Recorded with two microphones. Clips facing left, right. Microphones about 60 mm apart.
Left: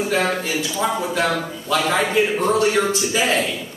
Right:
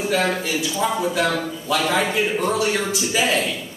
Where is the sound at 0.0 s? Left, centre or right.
Centre.